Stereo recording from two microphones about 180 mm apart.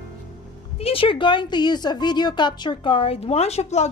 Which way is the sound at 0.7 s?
30° left (ahead or behind).